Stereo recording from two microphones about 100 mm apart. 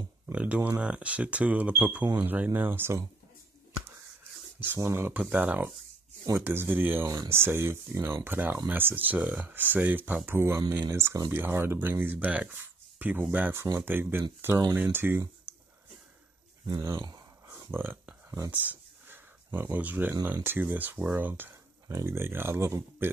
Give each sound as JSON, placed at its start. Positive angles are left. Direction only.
{"t": 0.3, "sound": "speech", "side_deg": -10}
{"t": 4.7, "sound": "speech", "side_deg": -30}
{"t": 5.2, "sound": "speech", "side_deg": -15}
{"t": 15.5, "sound": "a sound", "side_deg": -20}
{"t": 16.6, "sound": "speech", "side_deg": -45}
{"t": 17.6, "sound": "speech", "side_deg": -20}
{"t": 18.5, "sound": "a sound", "side_deg": -15}
{"t": 20.4, "sound": "speech", "side_deg": -20}
{"t": 21.8, "sound": "speech", "side_deg": -30}